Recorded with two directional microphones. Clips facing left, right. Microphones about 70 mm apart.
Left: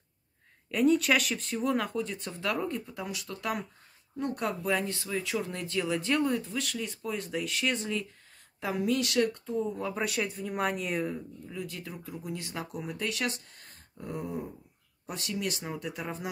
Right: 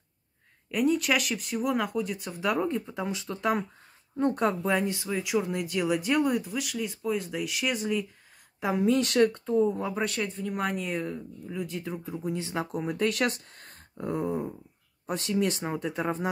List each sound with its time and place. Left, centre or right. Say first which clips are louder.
0.7 s speech: left 1 dB; centre
2.4 s speech: right 5 dB; right
8.5 s speech: right 5 dB; right
9.0 s speech: right 5 dB; right
9.9 s speech: right 2 dB; centre
11.4 s speech: right 9 dB; right
12.7 s speech: right 7 dB; right